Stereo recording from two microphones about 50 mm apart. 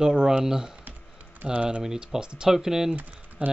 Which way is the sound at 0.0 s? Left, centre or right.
Centre.